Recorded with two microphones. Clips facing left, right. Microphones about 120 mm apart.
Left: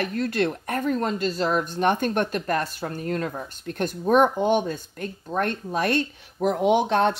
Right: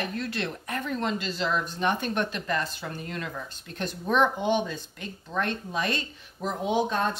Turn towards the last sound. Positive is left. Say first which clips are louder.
# left 6 dB
turn(degrees=70)  # may be behind; listen again after turning